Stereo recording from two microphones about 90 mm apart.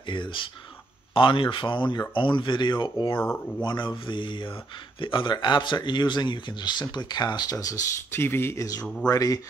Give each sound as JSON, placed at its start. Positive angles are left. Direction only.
{"t": 0.0, "sound": "speech", "side_deg": 60}
{"t": 3.2, "sound": "speech", "side_deg": 20}
{"t": 3.6, "sound": "speech", "side_deg": 55}
{"t": 8.1, "sound": "speech", "side_deg": 25}
{"t": 8.8, "sound": "speech", "side_deg": 10}
{"t": 9.1, "sound": "speech", "side_deg": 40}